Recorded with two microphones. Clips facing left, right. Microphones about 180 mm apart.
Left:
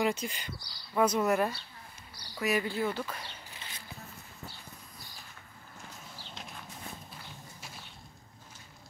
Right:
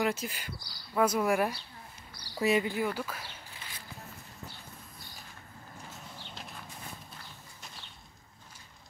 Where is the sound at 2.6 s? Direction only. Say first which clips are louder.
Even; 15° right (ahead or behind).